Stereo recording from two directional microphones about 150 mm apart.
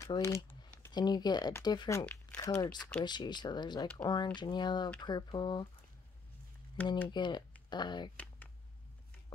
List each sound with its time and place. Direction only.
0.0 s a sound: 20° left (ahead or behind)
0.9 s speech: 30° left (ahead or behind)
7.1 s speech: 30° left (ahead or behind)